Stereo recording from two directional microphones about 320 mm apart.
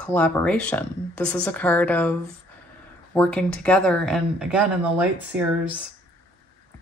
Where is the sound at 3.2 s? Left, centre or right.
Centre.